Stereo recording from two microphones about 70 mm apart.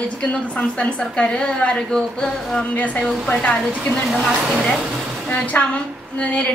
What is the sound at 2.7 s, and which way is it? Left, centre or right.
Speech, left.